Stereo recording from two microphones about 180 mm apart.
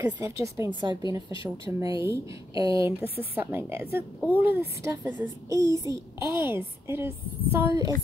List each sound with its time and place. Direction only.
0.0 s a woman's voice: 15° right (ahead or behind)